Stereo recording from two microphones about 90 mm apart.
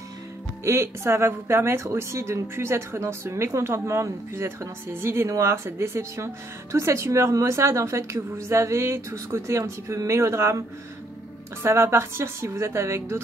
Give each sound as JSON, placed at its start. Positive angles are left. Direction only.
{"t": 0.7, "sound": "speech", "side_deg": -30}
{"t": 11.6, "sound": "speech", "side_deg": -30}